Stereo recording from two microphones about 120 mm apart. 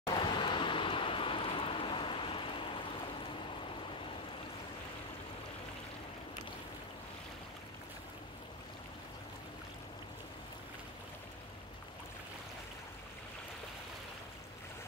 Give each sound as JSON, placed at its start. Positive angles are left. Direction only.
{"t": 0.1, "sound": "vehicle", "side_deg": 40}